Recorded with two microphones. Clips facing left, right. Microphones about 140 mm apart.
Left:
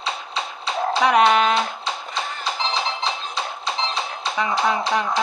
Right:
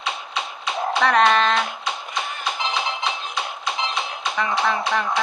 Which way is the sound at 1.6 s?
35° left (ahead or behind).